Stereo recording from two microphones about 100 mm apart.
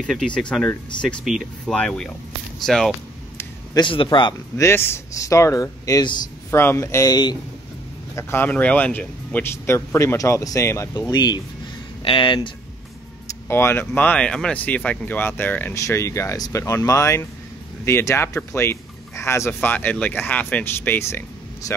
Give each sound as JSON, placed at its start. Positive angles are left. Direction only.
{"t": 0.0, "sound": "speech", "side_deg": 5}
{"t": 1.2, "sound": "speech", "side_deg": -5}
{"t": 1.7, "sound": "speech", "side_deg": 10}
{"t": 3.7, "sound": "a man's voice", "side_deg": 60}
{"t": 4.6, "sound": "speech", "side_deg": 25}
{"t": 6.5, "sound": "speech", "side_deg": 25}
{"t": 7.1, "sound": "speech", "side_deg": 50}
{"t": 8.2, "sound": "speech", "side_deg": 25}
{"t": 11.0, "sound": "speech", "side_deg": 40}
{"t": 12.0, "sound": "speech", "side_deg": 60}
{"t": 13.5, "sound": "speech", "side_deg": 25}